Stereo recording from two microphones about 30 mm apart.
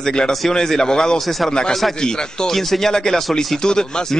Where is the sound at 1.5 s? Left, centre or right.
Left.